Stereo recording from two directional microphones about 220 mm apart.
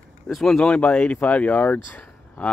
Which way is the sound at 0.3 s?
Centre (ahead or behind).